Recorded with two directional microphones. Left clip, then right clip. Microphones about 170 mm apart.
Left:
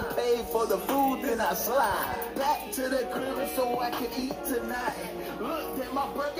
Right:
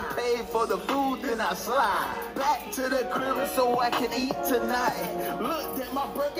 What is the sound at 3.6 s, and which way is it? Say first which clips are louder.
Music: right 5 dB; 30° right (ahead or behind).